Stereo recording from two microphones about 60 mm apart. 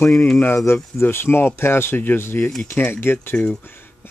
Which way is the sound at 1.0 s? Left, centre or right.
Left.